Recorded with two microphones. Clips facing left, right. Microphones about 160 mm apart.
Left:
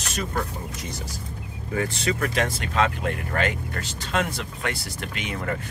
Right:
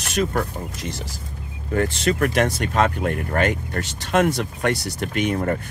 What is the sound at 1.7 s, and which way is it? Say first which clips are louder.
Speech: right 5 dB; 55° right (ahead or behind).